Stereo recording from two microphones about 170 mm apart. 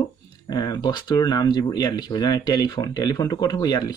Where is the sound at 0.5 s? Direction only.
25° left (ahead or behind).